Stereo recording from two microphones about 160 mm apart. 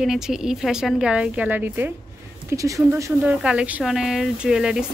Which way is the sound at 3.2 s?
5° right (ahead or behind).